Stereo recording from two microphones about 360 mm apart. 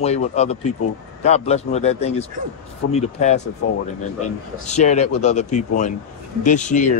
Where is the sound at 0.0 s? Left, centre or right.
Centre.